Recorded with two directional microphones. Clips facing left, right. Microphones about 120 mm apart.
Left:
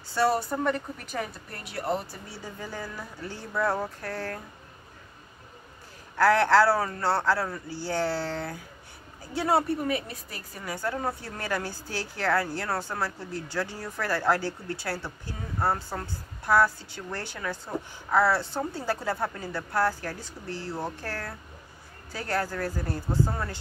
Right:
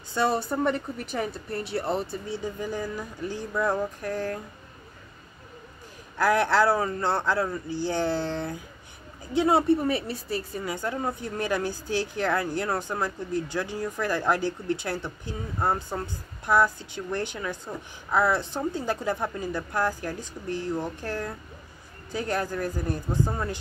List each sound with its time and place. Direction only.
0.1 s a woman's voice: 20° right (ahead or behind)
6.1 s a woman's voice: 15° right (ahead or behind)
9.8 s a woman's voice: 30° right (ahead or behind)